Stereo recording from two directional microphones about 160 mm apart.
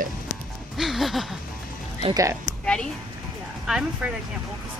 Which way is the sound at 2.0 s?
20° right (ahead or behind).